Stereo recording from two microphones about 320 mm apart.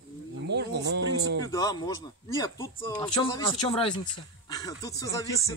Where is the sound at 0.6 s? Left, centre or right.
Right.